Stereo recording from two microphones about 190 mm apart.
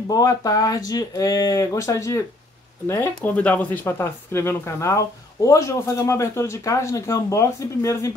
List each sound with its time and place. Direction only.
0.1 s speech: 20° left (ahead or behind)